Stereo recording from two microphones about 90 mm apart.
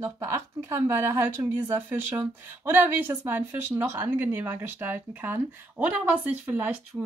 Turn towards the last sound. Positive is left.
turn(degrees=-15)  # may be behind; listen again after turning